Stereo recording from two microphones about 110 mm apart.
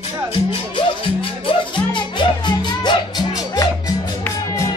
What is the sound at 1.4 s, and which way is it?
Music, 45° left (ahead or behind).